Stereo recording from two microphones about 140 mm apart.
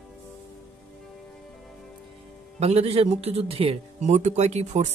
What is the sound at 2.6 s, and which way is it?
A man's voice, 50° right (ahead or behind).